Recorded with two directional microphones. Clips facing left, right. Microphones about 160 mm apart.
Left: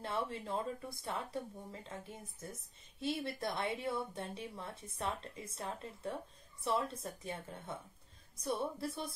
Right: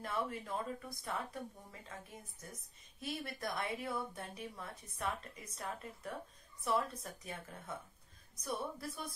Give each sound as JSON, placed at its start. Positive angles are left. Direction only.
{"t": 0.0, "sound": "a woman's voice", "side_deg": 30}